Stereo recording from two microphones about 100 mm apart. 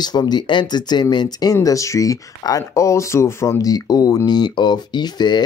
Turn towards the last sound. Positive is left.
turn(degrees=45)  # may be behind; listen again after turning